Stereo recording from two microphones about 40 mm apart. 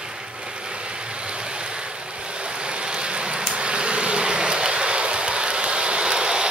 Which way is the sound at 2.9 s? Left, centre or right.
Right.